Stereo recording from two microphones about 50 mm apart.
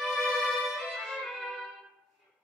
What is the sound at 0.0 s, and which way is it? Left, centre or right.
Violin, centre.